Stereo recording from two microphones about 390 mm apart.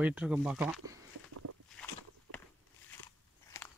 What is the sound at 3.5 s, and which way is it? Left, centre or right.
Biting, centre.